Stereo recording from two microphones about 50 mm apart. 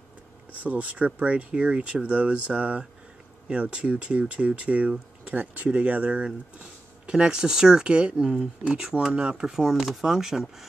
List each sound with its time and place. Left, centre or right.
0.7 s speech: right; by 10.7 s centre